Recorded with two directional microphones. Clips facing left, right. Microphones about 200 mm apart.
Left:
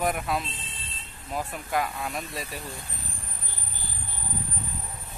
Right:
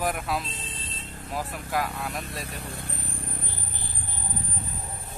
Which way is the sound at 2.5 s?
65° right (ahead or behind).